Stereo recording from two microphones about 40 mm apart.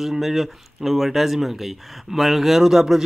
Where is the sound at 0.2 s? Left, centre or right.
Centre.